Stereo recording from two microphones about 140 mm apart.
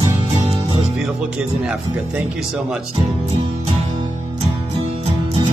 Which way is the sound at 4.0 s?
35° right (ahead or behind).